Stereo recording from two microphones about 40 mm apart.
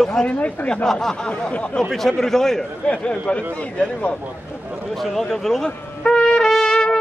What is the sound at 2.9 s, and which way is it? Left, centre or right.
A man's voice, left.